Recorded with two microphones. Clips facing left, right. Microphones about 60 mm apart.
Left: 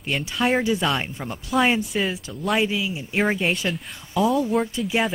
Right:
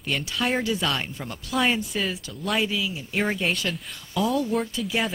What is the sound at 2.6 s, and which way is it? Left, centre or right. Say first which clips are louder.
Speech: left 3 dB; left.